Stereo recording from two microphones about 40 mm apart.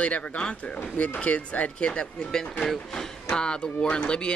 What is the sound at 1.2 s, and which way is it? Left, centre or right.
Speech, left.